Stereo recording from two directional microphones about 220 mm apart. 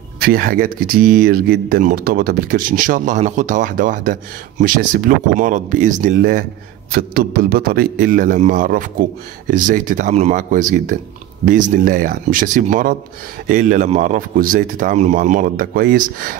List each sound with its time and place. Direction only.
0.2 s speech: 40° right (ahead or behind)